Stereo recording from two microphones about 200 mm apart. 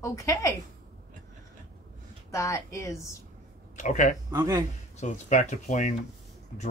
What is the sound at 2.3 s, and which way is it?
Speech, 15° left (ahead or behind).